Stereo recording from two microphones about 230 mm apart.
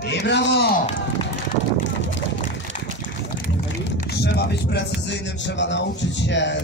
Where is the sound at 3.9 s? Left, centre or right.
Left.